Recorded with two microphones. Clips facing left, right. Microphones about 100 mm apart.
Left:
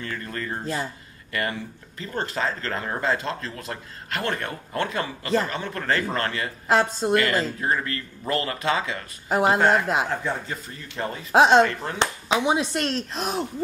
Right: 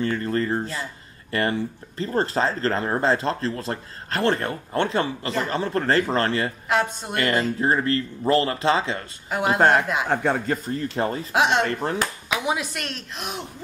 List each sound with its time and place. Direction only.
0.0 s speech: 30° right (ahead or behind)
6.7 s speech: 35° left (ahead or behind)
7.6 s speech: 30° right (ahead or behind)
9.3 s speech: 35° left (ahead or behind)
10.0 s speech: 60° right (ahead or behind); by 11.1 s 40° right (ahead or behind)
11.3 s speech: 35° left (ahead or behind)
11.6 s speech: 35° right (ahead or behind)
12.0 s speech: 30° left (ahead or behind)